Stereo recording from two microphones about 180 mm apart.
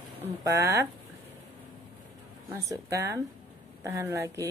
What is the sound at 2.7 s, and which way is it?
Speech, 15° right (ahead or behind).